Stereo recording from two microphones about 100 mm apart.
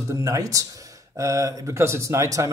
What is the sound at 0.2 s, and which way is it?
Speech, 35° right (ahead or behind).